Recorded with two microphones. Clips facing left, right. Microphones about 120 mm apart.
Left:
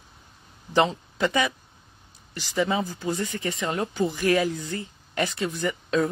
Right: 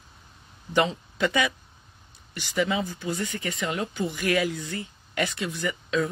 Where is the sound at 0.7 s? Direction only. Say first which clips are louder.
Left 2 dB; 35° left (ahead or behind).